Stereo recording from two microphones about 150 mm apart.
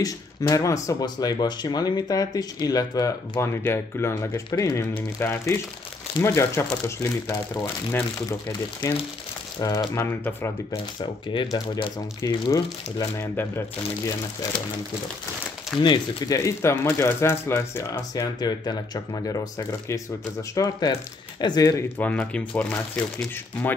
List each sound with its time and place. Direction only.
0.0 s speech: 25° left (ahead or behind)
11.5 s speech: 25° left (ahead or behind)
15.8 s speech: 25° left (ahead or behind)
22.0 s speech: 10° left (ahead or behind)